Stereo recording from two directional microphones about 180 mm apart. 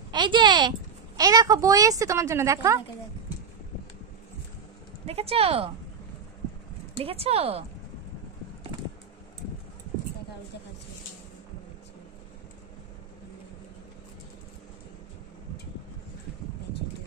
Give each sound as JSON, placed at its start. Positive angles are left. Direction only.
{"t": 0.1, "sound": "a woman's voice", "side_deg": -25}
{"t": 5.0, "sound": "speech", "side_deg": -35}
{"t": 7.0, "sound": "speech", "side_deg": -35}